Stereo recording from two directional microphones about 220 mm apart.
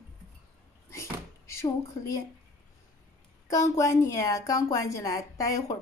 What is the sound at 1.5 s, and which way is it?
Speech, 15° left (ahead or behind).